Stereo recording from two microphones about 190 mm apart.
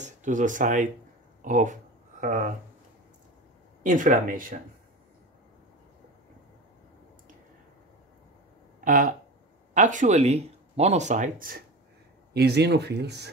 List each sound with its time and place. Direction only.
0.0 s speech: 40° right (ahead or behind)
3.8 s speech: 40° right (ahead or behind)
8.8 s speech: 45° right (ahead or behind)
12.4 s speech: 60° right (ahead or behind)